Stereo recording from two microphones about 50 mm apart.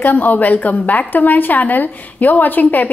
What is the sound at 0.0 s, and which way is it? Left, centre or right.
A woman's voice, left.